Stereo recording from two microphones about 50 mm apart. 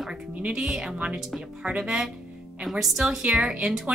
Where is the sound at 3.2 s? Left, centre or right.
Right.